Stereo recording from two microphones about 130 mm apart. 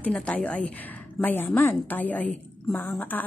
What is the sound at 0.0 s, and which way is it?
A woman's voice, 10° left (ahead or behind).